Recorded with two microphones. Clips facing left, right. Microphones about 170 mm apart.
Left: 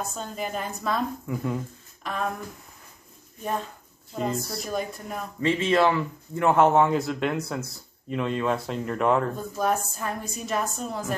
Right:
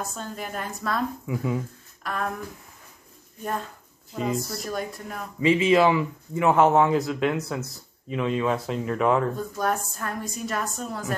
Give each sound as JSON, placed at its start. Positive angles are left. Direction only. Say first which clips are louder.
{"t": 0.0, "sound": "speech", "louder": "left 2 dB", "side_deg": 0}
{"t": 4.1, "sound": "speech", "louder": "right 1 dB", "side_deg": 0}